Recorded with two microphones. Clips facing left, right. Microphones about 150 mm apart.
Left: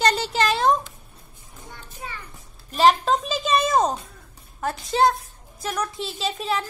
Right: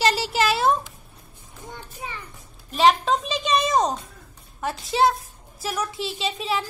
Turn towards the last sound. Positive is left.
turn(degrees=0)  # may be behind; listen again after turning